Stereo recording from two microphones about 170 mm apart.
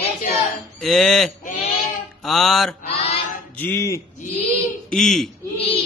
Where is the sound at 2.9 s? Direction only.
35° left (ahead or behind).